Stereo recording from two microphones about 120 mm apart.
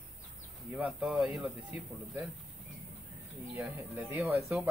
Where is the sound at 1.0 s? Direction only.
5° right (ahead or behind).